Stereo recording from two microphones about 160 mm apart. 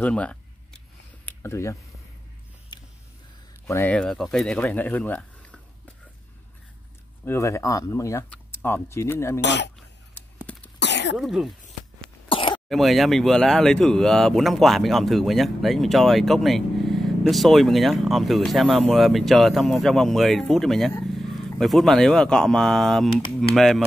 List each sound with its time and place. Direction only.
0.0 s speech: 5° left (ahead or behind)
1.2 s a sound: 15° left (ahead or behind)
3.6 s speech: 15° left (ahead or behind)
7.2 s speech: 20° left (ahead or behind)
9.4 s speech: 90° left
10.1 s a sound: 10° left (ahead or behind)
10.8 s throat clearing: 90° left
11.1 s speech: centre (ahead or behind)
12.3 s throat clearing: 35° left (ahead or behind)
12.6 s speech: centre (ahead or behind)